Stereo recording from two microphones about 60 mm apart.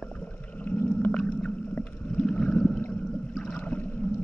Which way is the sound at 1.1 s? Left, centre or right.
Centre.